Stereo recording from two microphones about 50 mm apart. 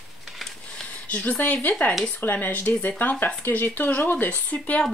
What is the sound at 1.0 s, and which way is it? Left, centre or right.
Speech, left.